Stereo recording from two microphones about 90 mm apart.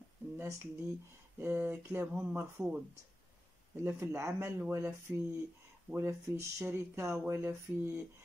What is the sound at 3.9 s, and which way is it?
Speech, 25° right (ahead or behind).